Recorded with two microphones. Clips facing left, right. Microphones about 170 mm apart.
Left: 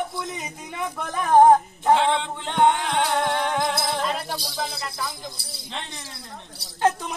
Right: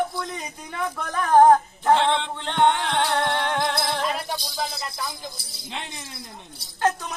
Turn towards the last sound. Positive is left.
turn(degrees=25)  # may be behind; listen again after turning